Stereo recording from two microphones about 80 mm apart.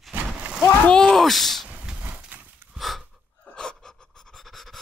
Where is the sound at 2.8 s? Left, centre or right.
Centre.